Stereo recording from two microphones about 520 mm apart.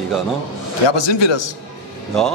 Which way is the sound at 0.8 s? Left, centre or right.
Left.